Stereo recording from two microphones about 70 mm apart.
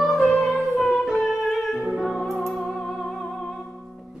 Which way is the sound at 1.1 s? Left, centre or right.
Centre.